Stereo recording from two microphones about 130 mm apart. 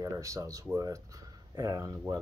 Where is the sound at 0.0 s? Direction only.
25° right (ahead or behind).